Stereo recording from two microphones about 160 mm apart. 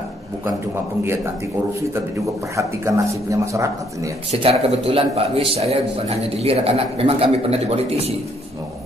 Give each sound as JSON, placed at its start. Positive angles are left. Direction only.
{"t": 2.5, "sound": "speech", "side_deg": -20}
{"t": 4.3, "sound": "a man's voice", "side_deg": -40}